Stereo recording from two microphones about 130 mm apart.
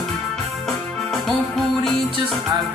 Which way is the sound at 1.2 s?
Centre (ahead or behind).